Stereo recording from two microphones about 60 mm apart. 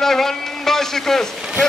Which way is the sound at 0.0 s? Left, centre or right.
Centre.